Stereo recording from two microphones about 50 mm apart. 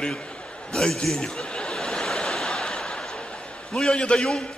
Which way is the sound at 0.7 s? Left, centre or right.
Centre.